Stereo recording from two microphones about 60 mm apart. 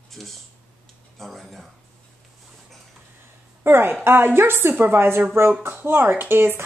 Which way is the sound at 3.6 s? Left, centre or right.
Right.